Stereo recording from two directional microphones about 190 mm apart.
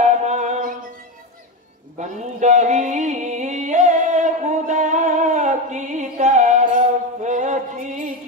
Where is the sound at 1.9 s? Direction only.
40° right (ahead or behind).